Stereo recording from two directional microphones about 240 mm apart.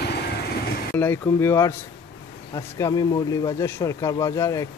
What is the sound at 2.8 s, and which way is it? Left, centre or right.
Speech, centre.